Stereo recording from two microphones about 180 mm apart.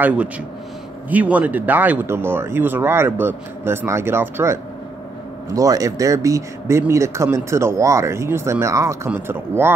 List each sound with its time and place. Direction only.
0.0 s speech: 5° right (ahead or behind)